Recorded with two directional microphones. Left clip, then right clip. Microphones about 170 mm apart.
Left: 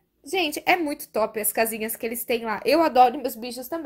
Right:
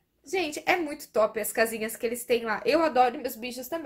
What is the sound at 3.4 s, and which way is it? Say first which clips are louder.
Speech: left 2 dB; 30° left (ahead or behind).